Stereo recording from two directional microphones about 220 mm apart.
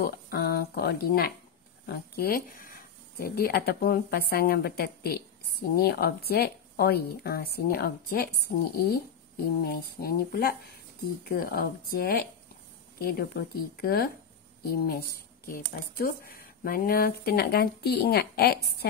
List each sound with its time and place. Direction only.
0.0 s speech: 45° left (ahead or behind)